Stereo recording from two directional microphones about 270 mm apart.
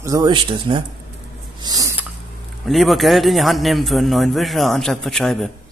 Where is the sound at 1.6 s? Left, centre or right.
Centre.